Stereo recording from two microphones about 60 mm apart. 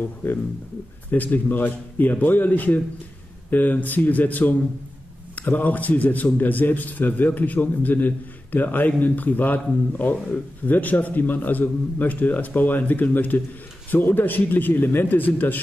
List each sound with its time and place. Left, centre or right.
1.1 s a man's voice: left